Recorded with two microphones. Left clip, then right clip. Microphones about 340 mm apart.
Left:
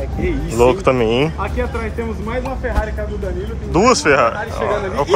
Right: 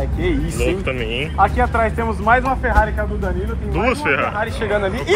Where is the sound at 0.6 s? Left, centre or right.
Left.